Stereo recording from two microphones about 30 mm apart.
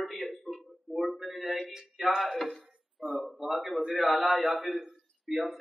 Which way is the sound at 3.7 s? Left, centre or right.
Right.